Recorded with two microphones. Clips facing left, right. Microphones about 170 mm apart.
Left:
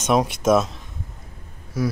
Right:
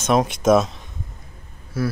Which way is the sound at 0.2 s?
5° left (ahead or behind).